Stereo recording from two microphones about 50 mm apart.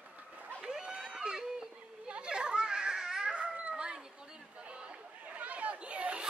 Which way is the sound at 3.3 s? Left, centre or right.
Right.